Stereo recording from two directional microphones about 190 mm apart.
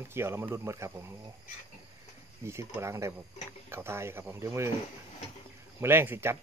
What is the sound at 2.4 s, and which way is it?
Speech, 15° right (ahead or behind).